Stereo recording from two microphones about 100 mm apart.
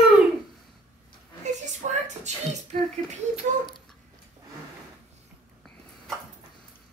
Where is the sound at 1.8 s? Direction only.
90° right.